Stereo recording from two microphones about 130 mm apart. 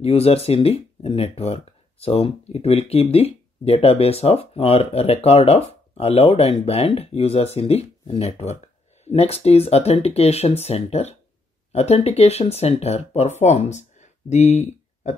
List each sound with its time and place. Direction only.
0.0 s speech: 50° left (ahead or behind)